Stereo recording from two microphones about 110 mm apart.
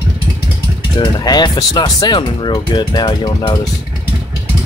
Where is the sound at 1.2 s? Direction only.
40° left (ahead or behind).